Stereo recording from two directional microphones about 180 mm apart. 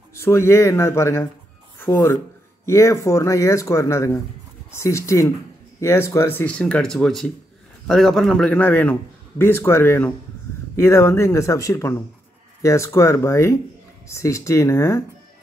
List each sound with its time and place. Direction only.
0.2 s a man's voice: 15° left (ahead or behind)